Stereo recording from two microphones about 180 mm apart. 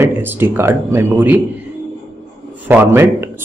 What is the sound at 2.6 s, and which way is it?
Speech, 10° right (ahead or behind).